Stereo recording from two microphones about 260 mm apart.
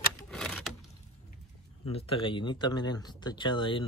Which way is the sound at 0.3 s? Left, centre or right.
Centre.